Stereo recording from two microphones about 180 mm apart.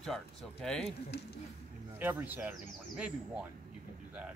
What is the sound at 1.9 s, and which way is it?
Speech, 10° right (ahead or behind).